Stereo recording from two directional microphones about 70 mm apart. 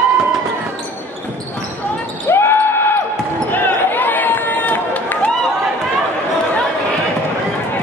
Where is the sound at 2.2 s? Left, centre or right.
Left.